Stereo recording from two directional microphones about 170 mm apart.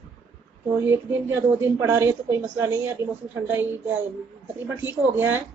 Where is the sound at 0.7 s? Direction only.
15° right (ahead or behind).